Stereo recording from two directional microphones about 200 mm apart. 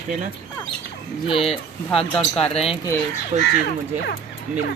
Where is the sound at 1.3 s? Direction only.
30° left (ahead or behind).